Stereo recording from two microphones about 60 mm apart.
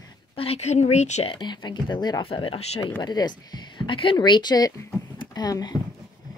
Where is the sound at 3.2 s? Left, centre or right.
Left.